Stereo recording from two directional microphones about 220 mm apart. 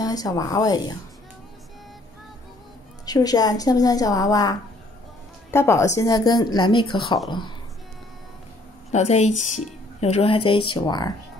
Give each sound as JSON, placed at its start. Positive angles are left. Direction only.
{"t": 0.0, "sound": "a woman's voice", "side_deg": 15}
{"t": 3.1, "sound": "a woman's voice", "side_deg": 15}
{"t": 8.9, "sound": "a woman's voice", "side_deg": 30}